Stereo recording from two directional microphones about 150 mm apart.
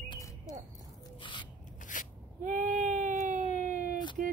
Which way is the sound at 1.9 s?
60° left (ahead or behind).